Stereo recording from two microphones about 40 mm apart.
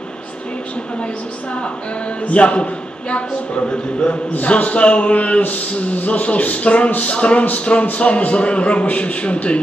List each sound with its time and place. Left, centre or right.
2.2 s speech: left
4.5 s a man's voice: left